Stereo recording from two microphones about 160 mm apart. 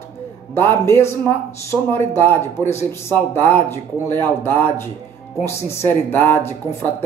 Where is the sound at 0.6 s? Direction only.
15° left (ahead or behind).